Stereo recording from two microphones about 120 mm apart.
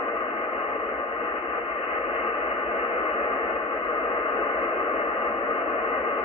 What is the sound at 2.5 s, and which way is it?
Radio, 50° left (ahead or behind).